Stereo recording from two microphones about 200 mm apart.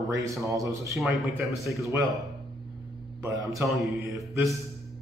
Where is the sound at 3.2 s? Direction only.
15° right (ahead or behind).